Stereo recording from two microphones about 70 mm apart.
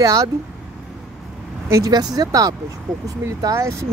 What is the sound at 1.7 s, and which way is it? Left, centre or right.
Speech, right.